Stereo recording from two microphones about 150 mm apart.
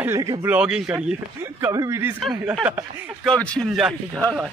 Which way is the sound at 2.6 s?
10° right (ahead or behind).